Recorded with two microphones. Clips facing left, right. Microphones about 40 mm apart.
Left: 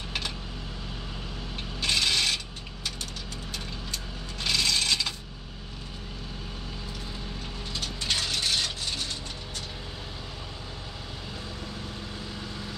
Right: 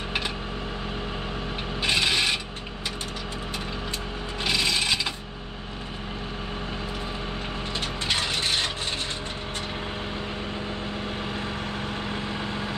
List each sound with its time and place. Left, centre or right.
1.8 s mechanisms: right
4.5 s wood: right
8.1 s mechanisms: right
12.1 s vehicle: right